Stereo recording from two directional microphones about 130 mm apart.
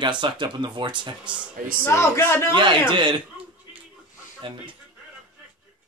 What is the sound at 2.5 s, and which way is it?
Speech, 40° right (ahead or behind).